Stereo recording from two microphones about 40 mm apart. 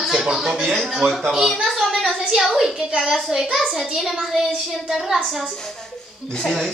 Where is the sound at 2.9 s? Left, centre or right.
Centre.